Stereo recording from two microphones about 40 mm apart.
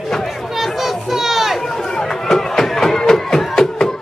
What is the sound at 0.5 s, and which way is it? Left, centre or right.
Children playing, centre.